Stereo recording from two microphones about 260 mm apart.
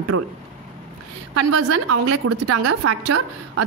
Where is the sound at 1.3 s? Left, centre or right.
Right.